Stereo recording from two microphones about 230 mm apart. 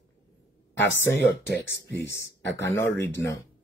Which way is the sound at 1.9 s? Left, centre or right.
Left.